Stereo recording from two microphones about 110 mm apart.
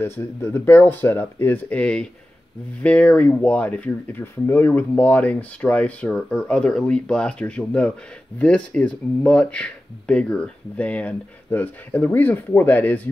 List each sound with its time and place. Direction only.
0.0 s speech: 20° left (ahead or behind)